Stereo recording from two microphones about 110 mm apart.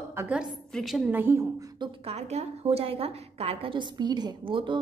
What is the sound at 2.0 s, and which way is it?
A woman's voice, 85° right.